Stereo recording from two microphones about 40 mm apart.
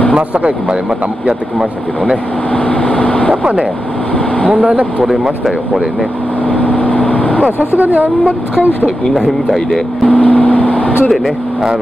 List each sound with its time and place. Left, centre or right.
0.3 s speech: right
2.5 s vehicle: left
4.5 s speech: right
6.4 s vehicle: left
7.7 s a woman's voice: right
10.0 s vehicle: left